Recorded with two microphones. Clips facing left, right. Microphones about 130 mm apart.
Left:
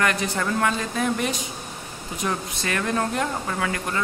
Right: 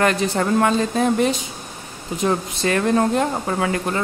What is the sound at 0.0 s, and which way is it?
Speech, 30° right (ahead or behind).